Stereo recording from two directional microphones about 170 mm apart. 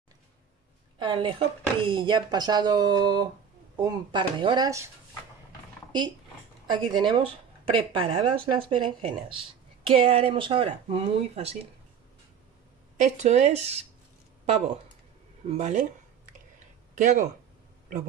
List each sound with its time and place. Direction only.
0.9 s speech: 30° right (ahead or behind)
5.9 s a sound: 25° right (ahead or behind)
6.7 s speech: 25° right (ahead or behind)
13.0 s speech: 45° right (ahead or behind)
15.4 s speech: 40° right (ahead or behind)
16.9 s speech: 50° right (ahead or behind)